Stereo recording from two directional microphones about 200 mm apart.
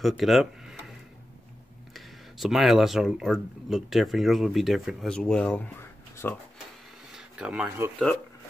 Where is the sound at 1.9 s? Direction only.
Centre (ahead or behind).